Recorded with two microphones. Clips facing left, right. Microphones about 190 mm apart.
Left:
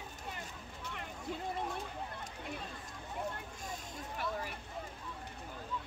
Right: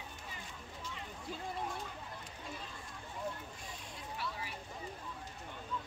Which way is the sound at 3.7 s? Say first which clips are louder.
Left 5 dB; 50° left (ahead or behind).